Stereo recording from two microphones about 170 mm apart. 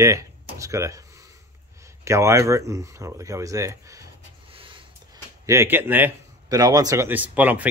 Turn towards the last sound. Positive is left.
turn(degrees=-10)  # may be behind; listen again after turning